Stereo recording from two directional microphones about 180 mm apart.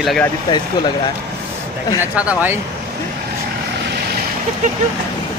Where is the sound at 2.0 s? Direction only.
5° right (ahead or behind).